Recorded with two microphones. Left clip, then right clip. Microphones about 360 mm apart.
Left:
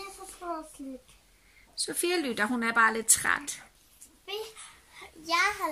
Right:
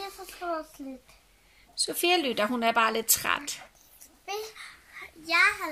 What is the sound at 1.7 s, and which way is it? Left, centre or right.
Speech, centre.